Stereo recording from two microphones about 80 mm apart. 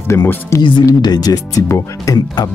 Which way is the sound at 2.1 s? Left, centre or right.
Left.